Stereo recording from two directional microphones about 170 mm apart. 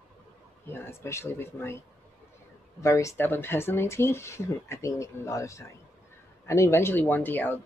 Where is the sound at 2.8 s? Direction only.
20° left (ahead or behind).